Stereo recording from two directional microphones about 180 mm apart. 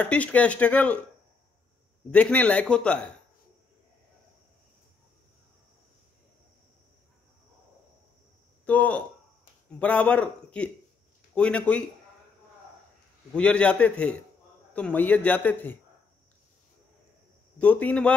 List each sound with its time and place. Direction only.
0.0 s a man's voice: 10° left (ahead or behind)
2.0 s a man's voice: 5° left (ahead or behind)
8.6 s a man's voice: 10° left (ahead or behind)
13.3 s a man's voice: 5° left (ahead or behind)
17.6 s a man's voice: 10° left (ahead or behind)